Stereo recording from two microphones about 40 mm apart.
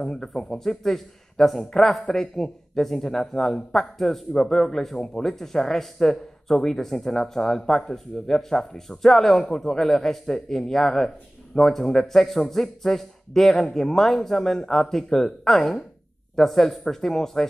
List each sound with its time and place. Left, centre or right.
0.0 s a man's voice: centre